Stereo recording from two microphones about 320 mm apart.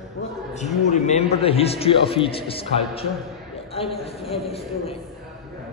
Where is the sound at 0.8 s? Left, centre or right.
Left.